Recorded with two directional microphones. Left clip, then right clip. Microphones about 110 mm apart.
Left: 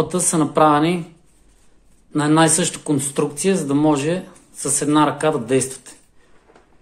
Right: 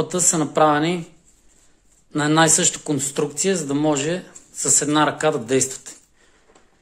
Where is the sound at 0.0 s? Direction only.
20° right (ahead or behind).